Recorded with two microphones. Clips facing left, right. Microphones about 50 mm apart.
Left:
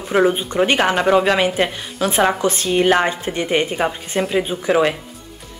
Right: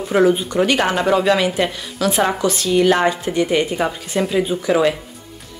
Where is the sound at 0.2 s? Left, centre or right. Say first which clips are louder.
Right 1 dB; left.